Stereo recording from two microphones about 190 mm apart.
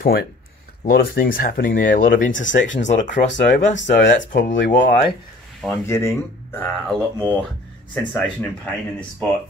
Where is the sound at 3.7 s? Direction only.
70° left (ahead or behind).